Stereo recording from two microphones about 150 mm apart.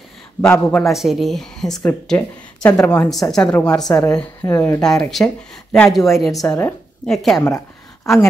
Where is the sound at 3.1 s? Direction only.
25° left (ahead or behind).